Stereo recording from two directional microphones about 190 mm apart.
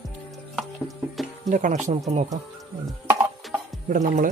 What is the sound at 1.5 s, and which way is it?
Speech, 40° right (ahead or behind).